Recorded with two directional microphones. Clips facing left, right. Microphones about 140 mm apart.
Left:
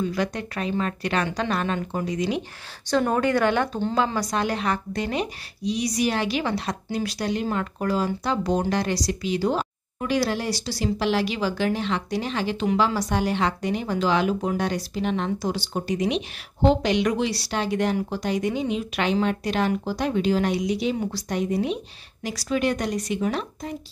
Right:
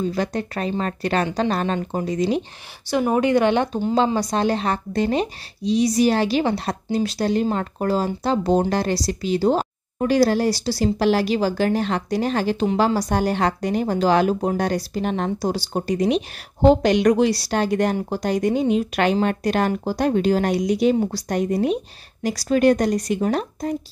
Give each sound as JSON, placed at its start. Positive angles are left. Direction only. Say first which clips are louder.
{"t": 0.0, "sound": "a woman's voice", "louder": "right 3 dB", "side_deg": -30}
{"t": 2.9, "sound": "speech", "louder": "right 2 dB", "side_deg": -10}
{"t": 3.3, "sound": "a woman's voice", "louder": "right 4 dB", "side_deg": -20}